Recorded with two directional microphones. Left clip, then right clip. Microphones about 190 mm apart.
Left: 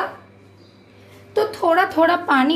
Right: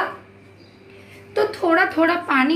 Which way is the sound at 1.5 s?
55° left (ahead or behind).